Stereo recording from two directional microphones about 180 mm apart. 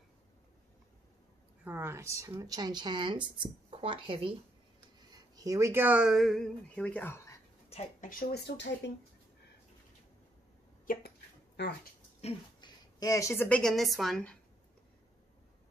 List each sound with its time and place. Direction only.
1.6 s speech: 10° right (ahead or behind); by 7.3 s 10° left (ahead or behind)
7.7 s speech: 35° left (ahead or behind)
8.1 s speech: 55° left (ahead or behind); by 8.9 s 75° left (ahead or behind)
10.9 s a sound: 60° left (ahead or behind)
12.2 s speech: 30° left (ahead or behind); by 14.4 s 5° left (ahead or behind)